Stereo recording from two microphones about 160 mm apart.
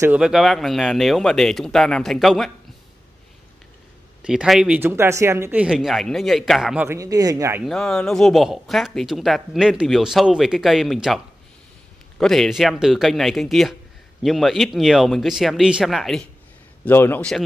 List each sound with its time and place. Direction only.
0.0 s speech: 5° right (ahead or behind)
4.2 s speech: 5° right (ahead or behind)
7.0 s speech: 20° right (ahead or behind)
7.6 s speech: 5° left (ahead or behind)
12.2 s speech: centre (ahead or behind)
16.8 s a man's voice: 15° left (ahead or behind)